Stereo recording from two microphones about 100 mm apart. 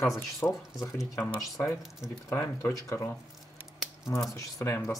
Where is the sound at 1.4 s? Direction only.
30° left (ahead or behind).